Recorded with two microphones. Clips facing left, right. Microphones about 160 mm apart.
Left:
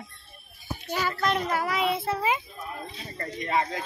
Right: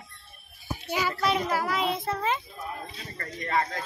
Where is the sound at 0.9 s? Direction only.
10° right (ahead or behind); by 2.4 s 10° left (ahead or behind).